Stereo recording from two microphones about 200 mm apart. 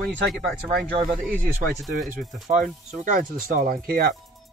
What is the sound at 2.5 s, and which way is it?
Speech, 40° right (ahead or behind).